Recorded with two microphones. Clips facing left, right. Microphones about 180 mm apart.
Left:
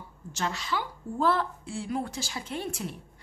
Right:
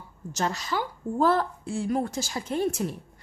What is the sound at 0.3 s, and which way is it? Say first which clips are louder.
Speech: right 3 dB; 40° right (ahead or behind).